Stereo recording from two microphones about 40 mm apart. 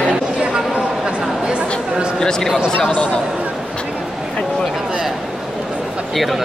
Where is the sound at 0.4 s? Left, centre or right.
Right.